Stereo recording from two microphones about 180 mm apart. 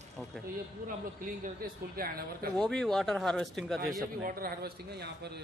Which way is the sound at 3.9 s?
50° right (ahead or behind).